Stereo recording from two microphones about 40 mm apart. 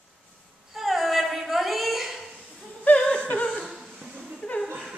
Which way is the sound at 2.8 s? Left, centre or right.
Left.